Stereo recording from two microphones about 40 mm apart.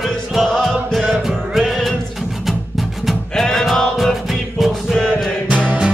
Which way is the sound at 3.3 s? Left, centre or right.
Centre.